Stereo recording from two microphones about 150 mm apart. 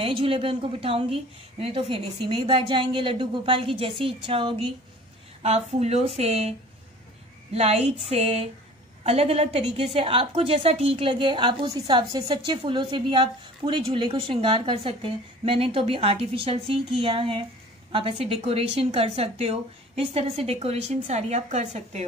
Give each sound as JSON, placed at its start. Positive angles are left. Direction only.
{"t": 0.0, "sound": "a woman's voice", "side_deg": -40}
{"t": 7.5, "sound": "a woman's voice", "side_deg": -45}